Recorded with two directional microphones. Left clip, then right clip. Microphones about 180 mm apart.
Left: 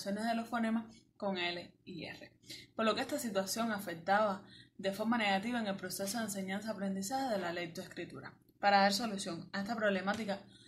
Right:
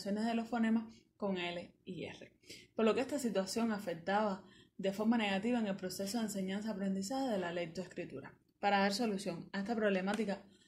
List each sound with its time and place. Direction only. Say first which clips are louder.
0.0 s speech: left 1 dB; 40° right (ahead or behind)